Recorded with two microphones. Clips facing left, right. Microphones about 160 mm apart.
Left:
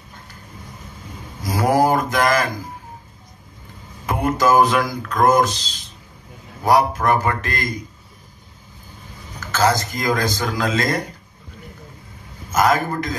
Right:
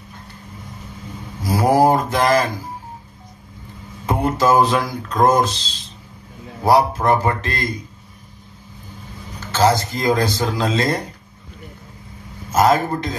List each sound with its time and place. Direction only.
1.4 s mantra: 30° right (ahead or behind)
4.0 s speech: 30° right (ahead or behind)
9.4 s speech: 30° right (ahead or behind)
12.5 s speech: 30° right (ahead or behind)